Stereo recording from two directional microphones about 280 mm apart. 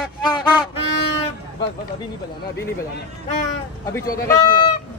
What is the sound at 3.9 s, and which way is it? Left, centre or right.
Speech, centre.